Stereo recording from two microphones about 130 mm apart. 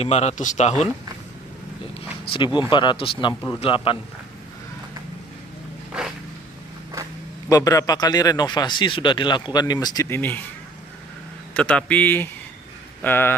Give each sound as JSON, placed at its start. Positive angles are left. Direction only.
{"t": 0.0, "sound": "speech", "side_deg": 55}
{"t": 2.3, "sound": "a man's voice", "side_deg": 40}
{"t": 7.4, "sound": "speech", "side_deg": 25}
{"t": 11.5, "sound": "speech", "side_deg": 10}